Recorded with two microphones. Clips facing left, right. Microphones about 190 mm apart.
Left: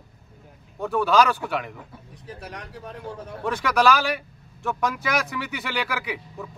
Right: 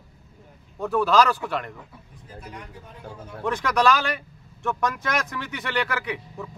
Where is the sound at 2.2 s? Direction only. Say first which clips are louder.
Left 2 dB; 80° left.